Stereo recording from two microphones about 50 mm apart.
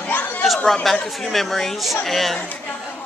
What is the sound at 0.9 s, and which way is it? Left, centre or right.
A woman's voice, centre.